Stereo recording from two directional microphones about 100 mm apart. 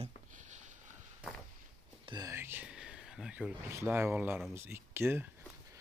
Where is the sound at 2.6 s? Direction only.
5° right (ahead or behind).